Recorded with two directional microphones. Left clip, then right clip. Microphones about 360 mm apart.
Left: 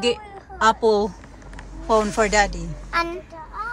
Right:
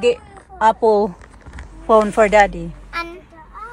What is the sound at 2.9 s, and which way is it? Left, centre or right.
Speech, centre.